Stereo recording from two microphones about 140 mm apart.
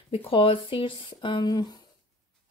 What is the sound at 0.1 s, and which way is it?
Speech, 45° left (ahead or behind).